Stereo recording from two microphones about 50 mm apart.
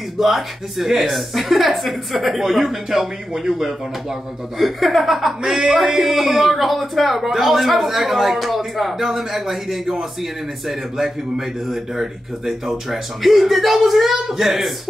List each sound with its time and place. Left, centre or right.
0.2 s speech: centre